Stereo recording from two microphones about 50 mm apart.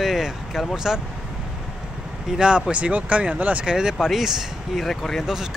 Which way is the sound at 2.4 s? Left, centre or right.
Centre.